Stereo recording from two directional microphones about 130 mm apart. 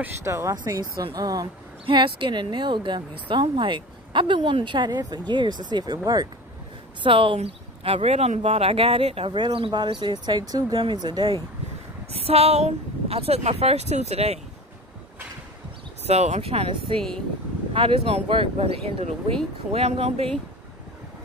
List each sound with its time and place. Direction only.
0.0 s speech: 20° right (ahead or behind)
1.9 s speech: 40° right (ahead or behind)
12.1 s speech: 50° right (ahead or behind)
16.0 s speech: 55° right (ahead or behind)
17.7 s speech: 45° right (ahead or behind)